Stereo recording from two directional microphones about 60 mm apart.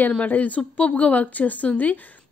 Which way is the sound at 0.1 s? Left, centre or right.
Left.